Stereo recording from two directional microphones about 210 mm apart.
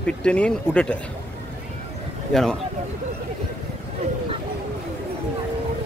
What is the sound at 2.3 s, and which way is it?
Speech, centre (ahead or behind).